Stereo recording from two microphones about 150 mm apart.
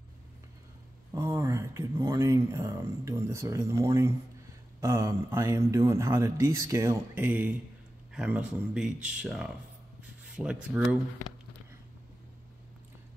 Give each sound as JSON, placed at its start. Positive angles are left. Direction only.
{"t": 1.1, "sound": "speech", "side_deg": -25}